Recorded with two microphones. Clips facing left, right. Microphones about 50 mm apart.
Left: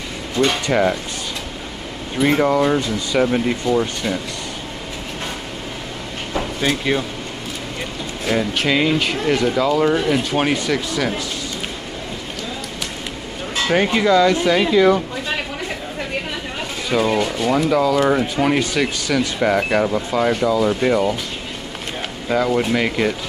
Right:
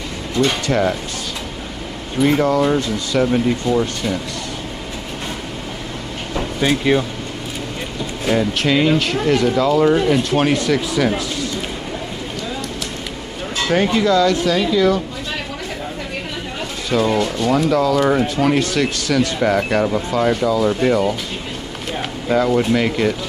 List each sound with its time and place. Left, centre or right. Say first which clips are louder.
0.4 s speech: even; centre
2.2 s speech: even; centre
6.6 s speech: right 4 dB; centre
8.3 s speech: right 2 dB; centre
13.7 s speech: even; centre
16.9 s speech: right 1 dB; centre
22.3 s speech: right 2 dB; centre